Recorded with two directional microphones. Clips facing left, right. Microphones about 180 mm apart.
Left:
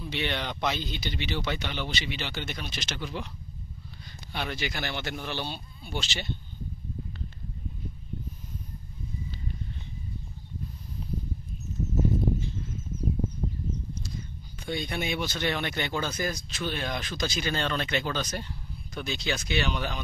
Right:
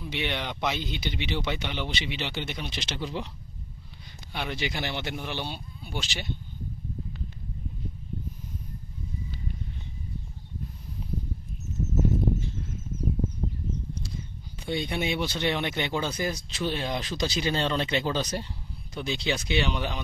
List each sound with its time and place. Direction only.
0.0 s speech: 15° right (ahead or behind)
4.3 s speech: 10° right (ahead or behind)
4.6 s speech: 25° right (ahead or behind)
14.8 s speech: 25° right (ahead or behind)